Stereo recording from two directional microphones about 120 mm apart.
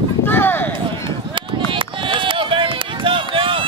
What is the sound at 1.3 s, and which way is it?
Run, 45° right (ahead or behind).